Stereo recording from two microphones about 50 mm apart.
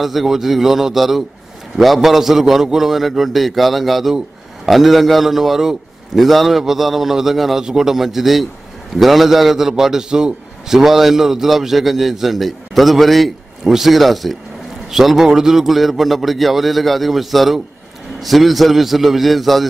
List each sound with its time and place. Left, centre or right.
0.0 s a man's voice: centre